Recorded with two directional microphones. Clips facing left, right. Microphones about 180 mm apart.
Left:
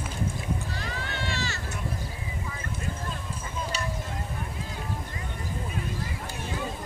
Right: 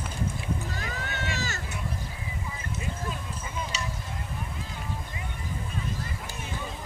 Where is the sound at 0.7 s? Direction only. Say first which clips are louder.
Even; 45° right (ahead or behind).